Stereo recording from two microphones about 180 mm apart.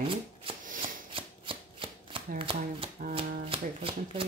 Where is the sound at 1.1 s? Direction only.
30° right (ahead or behind).